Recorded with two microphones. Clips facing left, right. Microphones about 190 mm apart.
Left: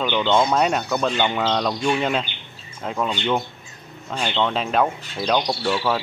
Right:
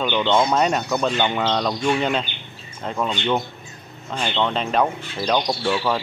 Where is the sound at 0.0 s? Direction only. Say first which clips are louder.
Even; 5° right (ahead or behind).